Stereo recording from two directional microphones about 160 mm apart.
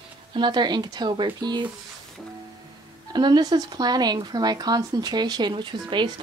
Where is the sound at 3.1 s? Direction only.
25° right (ahead or behind).